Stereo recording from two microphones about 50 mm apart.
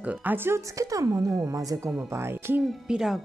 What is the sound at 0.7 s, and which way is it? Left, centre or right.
Speech, right.